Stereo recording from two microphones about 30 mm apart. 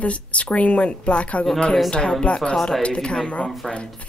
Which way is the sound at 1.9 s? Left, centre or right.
Left.